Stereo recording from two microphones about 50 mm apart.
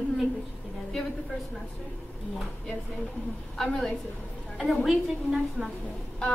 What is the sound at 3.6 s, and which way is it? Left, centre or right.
A woman's voice, centre.